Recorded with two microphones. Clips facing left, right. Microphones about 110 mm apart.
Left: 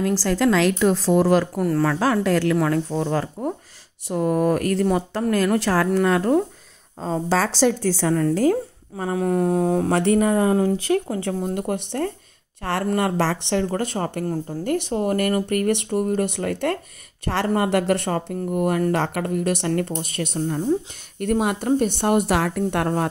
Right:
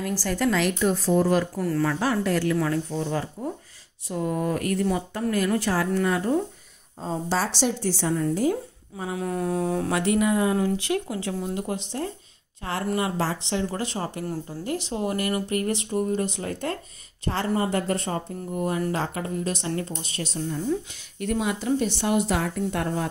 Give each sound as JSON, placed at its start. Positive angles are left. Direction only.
{"t": 0.1, "sound": "a woman's voice", "side_deg": 90}
{"t": 4.2, "sound": "a woman's voice", "side_deg": 80}
{"t": 7.6, "sound": "a woman's voice", "side_deg": 80}
{"t": 8.9, "sound": "speech", "side_deg": 55}
{"t": 9.2, "sound": "a sound", "side_deg": 35}
{"t": 10.1, "sound": "speech", "side_deg": 40}
{"t": 13.6, "sound": "speech", "side_deg": 50}